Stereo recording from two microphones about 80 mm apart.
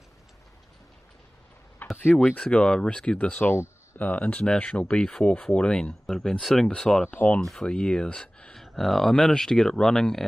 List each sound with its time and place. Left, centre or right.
1.8 s a sound: left
2.4 s speech: centre
3.5 s a sound: left
4.0 s speech: centre
7.1 s speech: left
7.3 s speech: centre